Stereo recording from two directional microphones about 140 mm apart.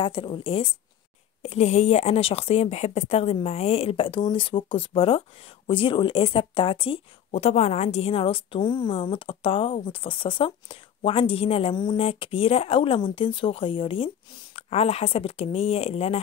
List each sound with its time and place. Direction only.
0.0 s speech: 40° left (ahead or behind)
1.4 s a woman's voice: 50° left (ahead or behind)
7.2 s a woman's voice: 50° left (ahead or behind)